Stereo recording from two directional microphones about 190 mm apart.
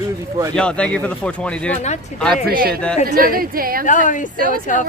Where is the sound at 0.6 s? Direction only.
5° left (ahead or behind).